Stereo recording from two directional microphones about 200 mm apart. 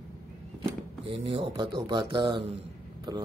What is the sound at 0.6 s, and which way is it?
A man's voice, 25° right (ahead or behind).